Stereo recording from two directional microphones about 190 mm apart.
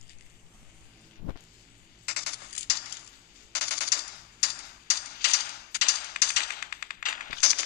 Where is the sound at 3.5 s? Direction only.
55° left (ahead or behind).